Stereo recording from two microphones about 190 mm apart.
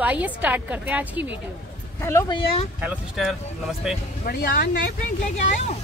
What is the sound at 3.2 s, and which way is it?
Speech, 5° right (ahead or behind).